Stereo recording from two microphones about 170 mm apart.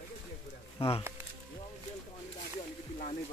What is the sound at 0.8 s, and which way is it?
Speech, 35° left (ahead or behind).